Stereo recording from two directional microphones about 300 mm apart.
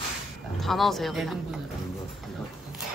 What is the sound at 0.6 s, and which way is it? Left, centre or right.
Speech, centre.